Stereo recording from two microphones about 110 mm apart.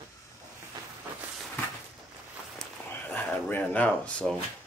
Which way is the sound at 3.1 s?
15° left (ahead or behind).